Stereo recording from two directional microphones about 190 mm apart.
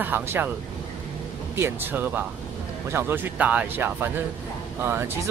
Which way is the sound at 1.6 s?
10° right (ahead or behind).